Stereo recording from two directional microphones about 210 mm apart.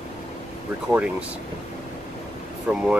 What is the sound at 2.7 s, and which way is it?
Speech, 5° right (ahead or behind).